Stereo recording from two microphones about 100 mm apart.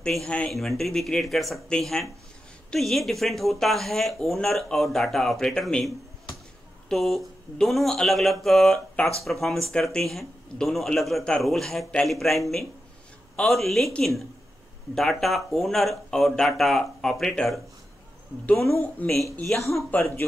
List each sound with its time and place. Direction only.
0.0 s speech: 5° left (ahead or behind)
6.9 s speech: centre (ahead or behind)
18.6 s speech: 30° left (ahead or behind)
19.9 s speech: 15° left (ahead or behind)